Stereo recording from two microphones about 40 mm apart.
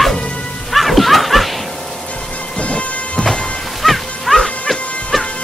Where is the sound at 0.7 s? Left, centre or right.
Centre.